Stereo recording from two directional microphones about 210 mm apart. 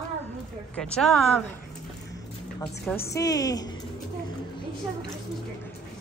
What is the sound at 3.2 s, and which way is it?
Speech, 15° left (ahead or behind).